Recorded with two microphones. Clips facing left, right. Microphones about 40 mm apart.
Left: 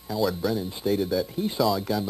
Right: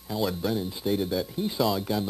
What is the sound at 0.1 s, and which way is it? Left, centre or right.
Speech, centre.